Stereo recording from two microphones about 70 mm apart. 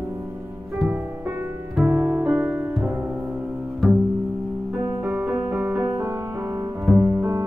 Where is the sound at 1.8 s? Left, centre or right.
Right.